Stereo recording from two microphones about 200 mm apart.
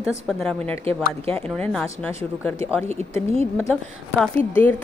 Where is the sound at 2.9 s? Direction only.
35° right (ahead or behind).